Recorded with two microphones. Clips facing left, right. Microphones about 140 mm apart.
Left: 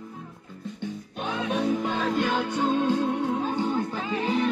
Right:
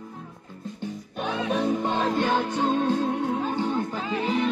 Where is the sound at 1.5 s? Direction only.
35° right (ahead or behind).